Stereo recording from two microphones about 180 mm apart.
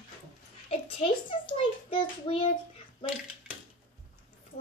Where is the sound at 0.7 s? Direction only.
30° left (ahead or behind).